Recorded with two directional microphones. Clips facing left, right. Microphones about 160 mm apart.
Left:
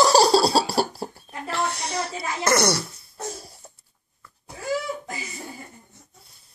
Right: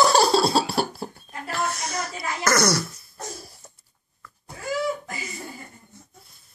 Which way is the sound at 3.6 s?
15° left (ahead or behind).